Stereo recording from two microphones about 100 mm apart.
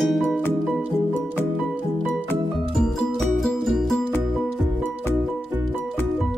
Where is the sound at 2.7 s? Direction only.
5° left (ahead or behind).